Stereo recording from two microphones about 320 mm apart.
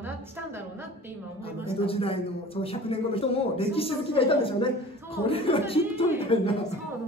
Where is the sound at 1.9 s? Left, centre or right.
Centre.